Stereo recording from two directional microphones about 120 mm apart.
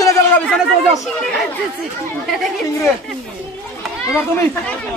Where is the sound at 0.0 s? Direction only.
25° left (ahead or behind).